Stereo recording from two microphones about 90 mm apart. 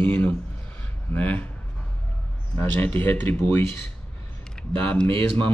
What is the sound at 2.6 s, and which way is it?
Speech, 20° left (ahead or behind).